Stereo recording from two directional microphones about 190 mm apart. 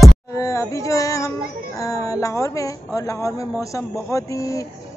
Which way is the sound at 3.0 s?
15° left (ahead or behind).